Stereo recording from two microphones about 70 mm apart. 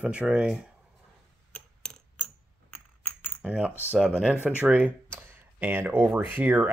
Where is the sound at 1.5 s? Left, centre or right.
Centre.